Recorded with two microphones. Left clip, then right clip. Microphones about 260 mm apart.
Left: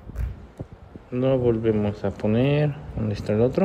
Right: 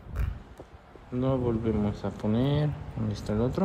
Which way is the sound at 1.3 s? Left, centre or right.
Right.